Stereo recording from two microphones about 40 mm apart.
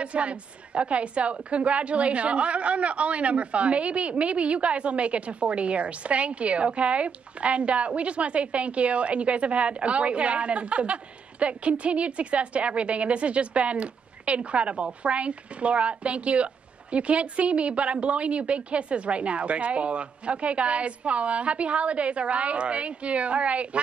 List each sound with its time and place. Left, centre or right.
0.0 s a woman's voice: right